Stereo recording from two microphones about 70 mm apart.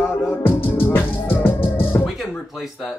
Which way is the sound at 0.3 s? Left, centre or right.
Left.